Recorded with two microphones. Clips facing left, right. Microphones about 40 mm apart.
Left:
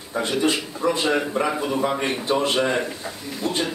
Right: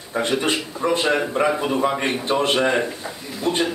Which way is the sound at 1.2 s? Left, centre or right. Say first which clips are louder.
Right 3 dB; centre.